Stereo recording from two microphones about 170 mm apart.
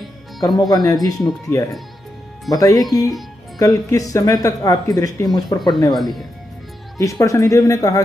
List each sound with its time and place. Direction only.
0.6 s speech: 20° left (ahead or behind)
5.9 s speech: centre (ahead or behind)
7.0 s speech: 20° left (ahead or behind)